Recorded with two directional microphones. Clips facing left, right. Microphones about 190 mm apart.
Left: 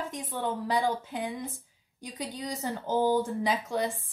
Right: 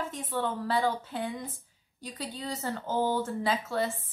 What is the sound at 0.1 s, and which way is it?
A woman's voice, 15° left (ahead or behind).